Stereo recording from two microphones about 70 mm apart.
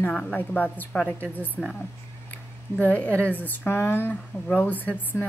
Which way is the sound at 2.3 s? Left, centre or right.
Left.